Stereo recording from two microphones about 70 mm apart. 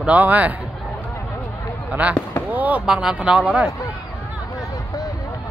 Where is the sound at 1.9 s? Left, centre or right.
Centre.